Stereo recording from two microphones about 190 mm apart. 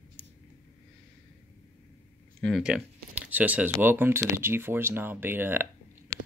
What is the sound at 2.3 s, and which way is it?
Speech, centre (ahead or behind).